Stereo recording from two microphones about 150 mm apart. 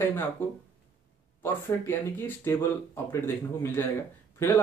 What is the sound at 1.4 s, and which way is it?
Speech, 15° left (ahead or behind).